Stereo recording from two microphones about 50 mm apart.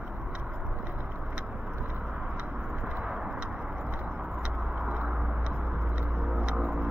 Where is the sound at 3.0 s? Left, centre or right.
Centre.